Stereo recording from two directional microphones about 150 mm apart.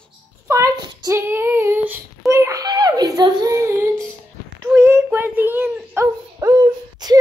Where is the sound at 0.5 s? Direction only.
20° right (ahead or behind).